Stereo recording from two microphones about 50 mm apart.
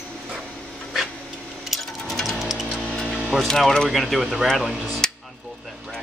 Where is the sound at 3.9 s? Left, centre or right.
Centre.